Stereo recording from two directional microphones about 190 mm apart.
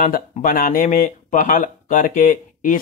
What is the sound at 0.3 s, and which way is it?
Speech, 45° left (ahead or behind).